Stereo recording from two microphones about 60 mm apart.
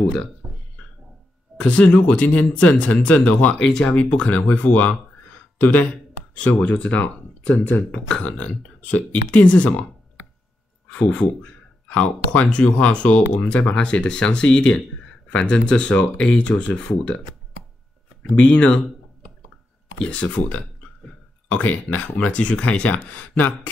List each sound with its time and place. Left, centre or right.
0.0 s speech: centre
1.6 s speech: centre
3.6 s speech: centre
3.9 s speech: centre
6.3 s speech: left
10.9 s speech: centre
18.3 s speech: centre
20.0 s speech: centre